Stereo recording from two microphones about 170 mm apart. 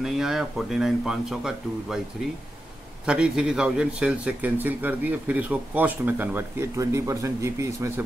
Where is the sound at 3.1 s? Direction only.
5° right (ahead or behind).